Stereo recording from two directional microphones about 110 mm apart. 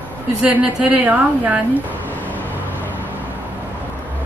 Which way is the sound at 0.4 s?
10° right (ahead or behind).